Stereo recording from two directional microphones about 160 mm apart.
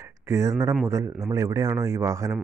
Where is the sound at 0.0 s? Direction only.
15° right (ahead or behind).